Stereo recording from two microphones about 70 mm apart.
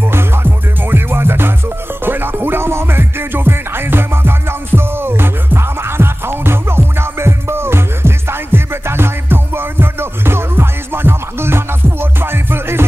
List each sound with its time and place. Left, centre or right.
0.1 s music: right